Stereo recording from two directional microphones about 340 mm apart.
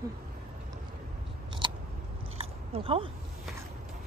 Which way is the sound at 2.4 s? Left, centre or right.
Centre.